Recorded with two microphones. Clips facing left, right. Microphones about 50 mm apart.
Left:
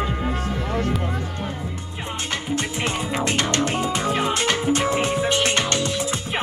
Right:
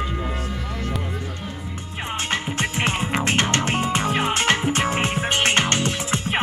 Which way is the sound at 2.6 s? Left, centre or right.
Right.